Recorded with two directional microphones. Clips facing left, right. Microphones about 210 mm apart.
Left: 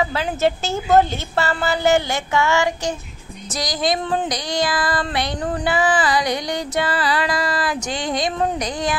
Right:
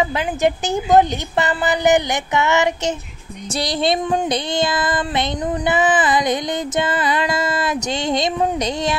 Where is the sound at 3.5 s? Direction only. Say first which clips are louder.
Right 3 dB; 30° right (ahead or behind).